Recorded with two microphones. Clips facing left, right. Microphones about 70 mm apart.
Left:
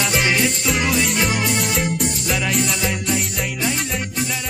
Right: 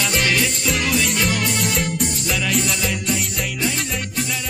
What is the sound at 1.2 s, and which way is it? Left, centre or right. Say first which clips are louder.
Music: left 1 dB; centre.